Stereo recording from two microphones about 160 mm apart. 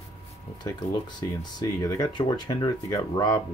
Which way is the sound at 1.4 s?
25° left (ahead or behind).